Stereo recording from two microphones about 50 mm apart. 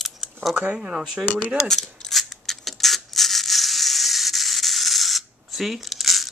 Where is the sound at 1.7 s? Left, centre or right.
Centre.